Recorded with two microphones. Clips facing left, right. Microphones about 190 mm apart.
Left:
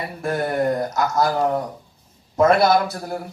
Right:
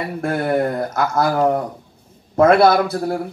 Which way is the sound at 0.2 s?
60° right (ahead or behind).